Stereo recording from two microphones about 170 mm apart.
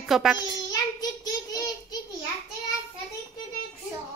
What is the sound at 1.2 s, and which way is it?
Child singing, 20° left (ahead or behind).